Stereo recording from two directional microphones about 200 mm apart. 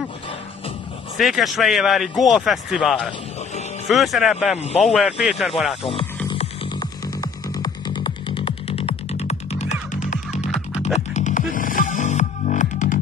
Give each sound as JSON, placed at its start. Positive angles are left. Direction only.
{"t": 1.1, "sound": "speech", "side_deg": 0}
{"t": 4.6, "sound": "speech", "side_deg": 35}
{"t": 4.8, "sound": "speech", "side_deg": 0}
{"t": 6.2, "sound": "music", "side_deg": 25}